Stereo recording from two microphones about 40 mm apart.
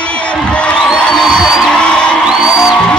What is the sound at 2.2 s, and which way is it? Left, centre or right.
Music, centre.